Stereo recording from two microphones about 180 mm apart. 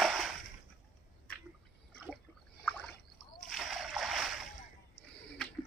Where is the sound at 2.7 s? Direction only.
10° left (ahead or behind).